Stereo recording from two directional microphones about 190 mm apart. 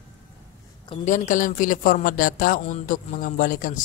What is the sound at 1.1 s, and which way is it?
Speech, 45° left (ahead or behind).